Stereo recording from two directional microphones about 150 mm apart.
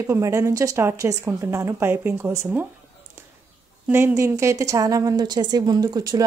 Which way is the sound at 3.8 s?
15° right (ahead or behind).